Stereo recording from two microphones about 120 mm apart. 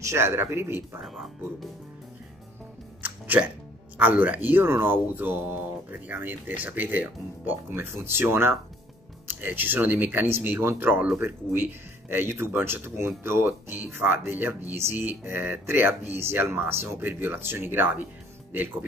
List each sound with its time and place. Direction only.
0.0 s speech: 20° right (ahead or behind)
1.0 s speech: centre (ahead or behind)
3.0 s a sound: 10° right (ahead or behind)
4.0 s speech: 10° right (ahead or behind)